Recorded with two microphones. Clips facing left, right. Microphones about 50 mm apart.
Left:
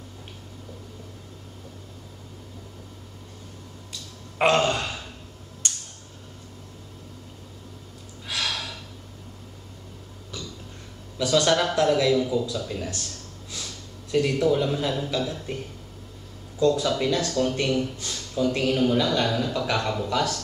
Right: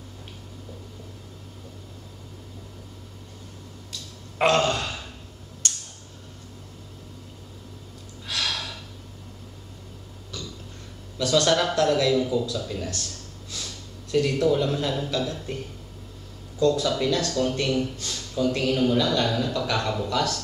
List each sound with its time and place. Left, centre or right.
4.4 s a sound: centre
8.3 s gasp: centre
11.1 s a man's voice: centre
16.5 s speech: left
17.3 s a man's voice: centre